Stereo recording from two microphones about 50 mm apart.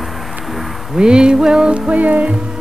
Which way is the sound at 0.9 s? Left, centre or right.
Centre.